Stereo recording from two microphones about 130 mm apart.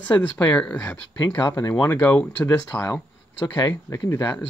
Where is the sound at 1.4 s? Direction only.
25° left (ahead or behind).